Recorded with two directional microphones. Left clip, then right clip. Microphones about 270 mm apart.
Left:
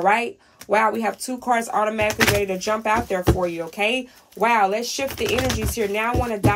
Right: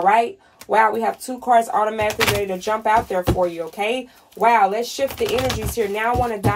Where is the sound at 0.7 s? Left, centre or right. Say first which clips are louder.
Right 3 dB; centre.